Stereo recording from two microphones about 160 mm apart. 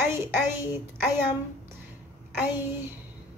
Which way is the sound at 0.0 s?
15° right (ahead or behind).